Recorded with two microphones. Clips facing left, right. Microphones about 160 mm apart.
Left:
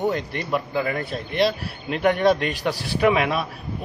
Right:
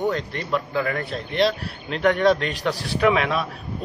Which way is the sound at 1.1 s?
5° left (ahead or behind).